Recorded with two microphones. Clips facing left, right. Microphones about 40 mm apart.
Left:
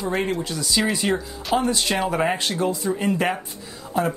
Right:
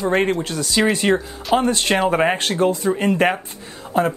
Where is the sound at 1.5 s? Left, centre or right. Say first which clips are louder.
Right 4 dB; right.